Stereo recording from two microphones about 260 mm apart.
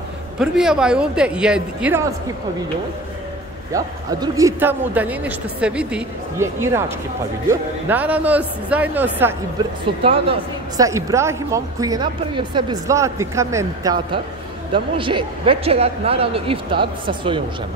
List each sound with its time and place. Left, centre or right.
0.4 s speech: centre
3.7 s speech: centre
10.0 s a man's voice: right